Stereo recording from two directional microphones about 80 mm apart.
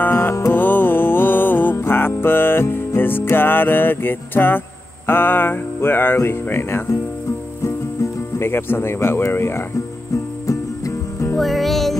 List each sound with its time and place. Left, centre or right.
0.0 s music: left
11.3 s music: centre